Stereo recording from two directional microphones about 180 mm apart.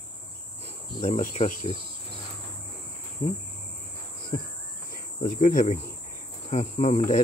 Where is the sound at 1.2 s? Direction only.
40° left (ahead or behind).